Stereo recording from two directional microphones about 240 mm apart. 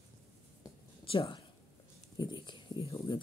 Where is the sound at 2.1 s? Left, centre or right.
Centre.